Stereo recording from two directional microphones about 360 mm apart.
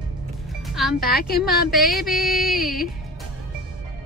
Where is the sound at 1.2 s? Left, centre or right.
Left.